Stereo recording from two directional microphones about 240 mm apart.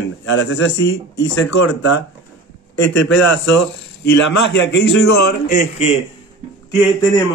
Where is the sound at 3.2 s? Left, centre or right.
Left.